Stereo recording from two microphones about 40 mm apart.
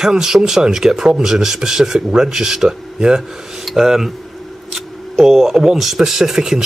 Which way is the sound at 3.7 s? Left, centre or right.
Centre.